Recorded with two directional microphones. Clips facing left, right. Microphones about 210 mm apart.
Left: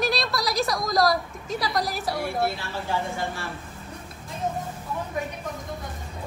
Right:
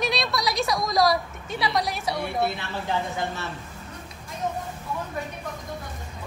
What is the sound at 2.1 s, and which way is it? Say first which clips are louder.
Speech: even; 20° right (ahead or behind).